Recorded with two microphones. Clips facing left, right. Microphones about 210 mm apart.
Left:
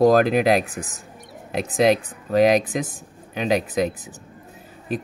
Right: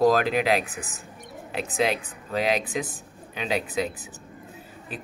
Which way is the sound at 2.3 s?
45° left (ahead or behind).